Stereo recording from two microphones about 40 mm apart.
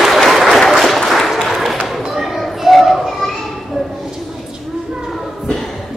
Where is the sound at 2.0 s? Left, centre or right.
Centre.